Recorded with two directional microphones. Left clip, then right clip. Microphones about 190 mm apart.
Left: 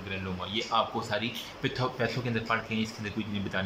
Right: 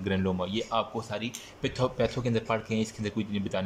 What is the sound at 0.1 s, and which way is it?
A man's voice, 30° right (ahead or behind).